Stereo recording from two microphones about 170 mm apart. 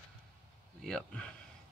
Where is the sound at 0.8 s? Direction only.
5° left (ahead or behind).